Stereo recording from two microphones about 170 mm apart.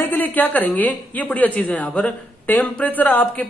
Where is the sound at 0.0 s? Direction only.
10° left (ahead or behind).